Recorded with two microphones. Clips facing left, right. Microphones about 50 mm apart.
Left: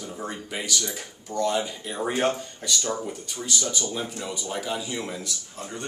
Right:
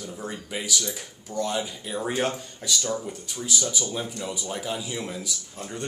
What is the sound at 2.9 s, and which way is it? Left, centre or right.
Speech, centre.